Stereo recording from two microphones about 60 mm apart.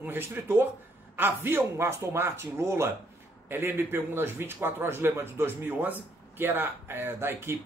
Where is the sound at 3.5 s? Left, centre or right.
Right.